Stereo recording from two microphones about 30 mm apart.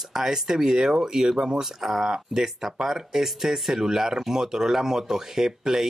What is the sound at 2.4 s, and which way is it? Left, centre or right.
Speech, centre.